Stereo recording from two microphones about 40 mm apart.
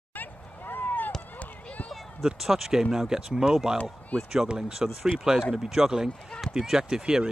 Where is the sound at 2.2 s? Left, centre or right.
Centre.